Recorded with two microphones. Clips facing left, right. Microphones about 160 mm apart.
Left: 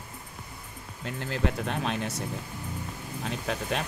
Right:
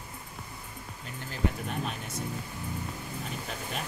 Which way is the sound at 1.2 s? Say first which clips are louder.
Left 3 dB; 80° left.